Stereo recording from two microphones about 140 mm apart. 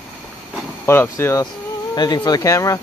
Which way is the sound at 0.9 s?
15° left (ahead or behind).